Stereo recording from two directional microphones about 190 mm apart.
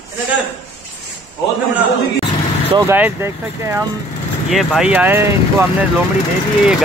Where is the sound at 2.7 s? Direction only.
10° right (ahead or behind).